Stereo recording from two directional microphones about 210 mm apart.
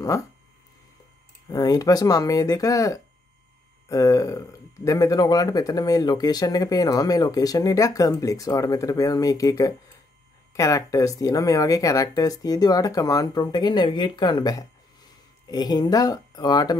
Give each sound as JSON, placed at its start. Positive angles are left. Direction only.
{"t": 0.0, "sound": "speech", "side_deg": 15}
{"t": 1.5, "sound": "speech", "side_deg": 15}